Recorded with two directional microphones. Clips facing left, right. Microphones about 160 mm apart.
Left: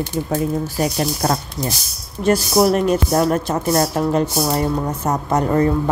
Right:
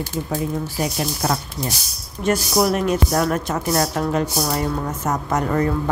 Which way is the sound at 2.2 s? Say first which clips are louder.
Left 4 dB; 35° left (ahead or behind).